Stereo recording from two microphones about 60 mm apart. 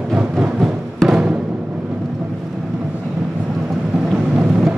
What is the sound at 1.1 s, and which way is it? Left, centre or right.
Music, centre.